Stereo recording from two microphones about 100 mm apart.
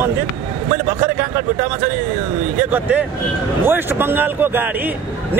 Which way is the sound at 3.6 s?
20° right (ahead or behind).